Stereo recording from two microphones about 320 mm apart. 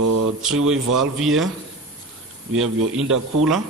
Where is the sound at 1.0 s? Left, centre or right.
Centre.